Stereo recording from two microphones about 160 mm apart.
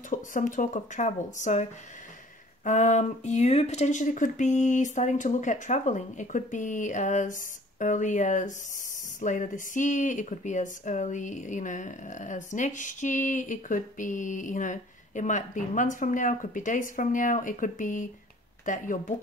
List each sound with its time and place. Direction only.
0.1 s speech: 55° left (ahead or behind)